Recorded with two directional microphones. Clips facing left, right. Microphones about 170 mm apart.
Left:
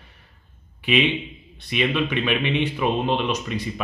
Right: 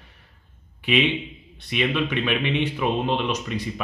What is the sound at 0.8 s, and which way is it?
A man's voice, 15° left (ahead or behind).